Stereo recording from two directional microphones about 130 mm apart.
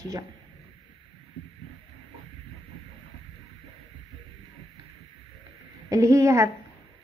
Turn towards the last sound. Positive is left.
turn(degrees=-25)  # may be behind; listen again after turning